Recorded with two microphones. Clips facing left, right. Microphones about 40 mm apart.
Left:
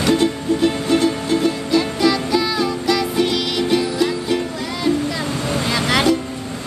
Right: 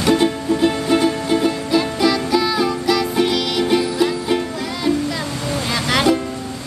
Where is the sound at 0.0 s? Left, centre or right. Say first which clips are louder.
Right 1 dB; centre.